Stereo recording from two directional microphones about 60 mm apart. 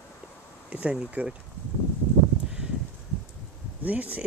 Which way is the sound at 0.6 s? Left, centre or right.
Right.